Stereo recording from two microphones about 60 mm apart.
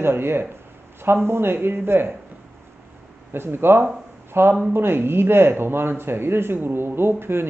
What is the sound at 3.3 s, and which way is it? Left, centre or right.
Speech, right.